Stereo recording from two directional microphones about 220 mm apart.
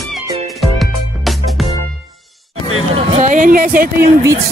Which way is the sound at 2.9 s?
35° right (ahead or behind).